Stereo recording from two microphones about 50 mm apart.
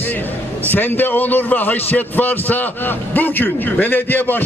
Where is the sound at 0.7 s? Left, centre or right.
Left.